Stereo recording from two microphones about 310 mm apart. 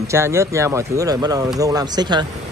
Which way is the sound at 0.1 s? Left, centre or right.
Centre.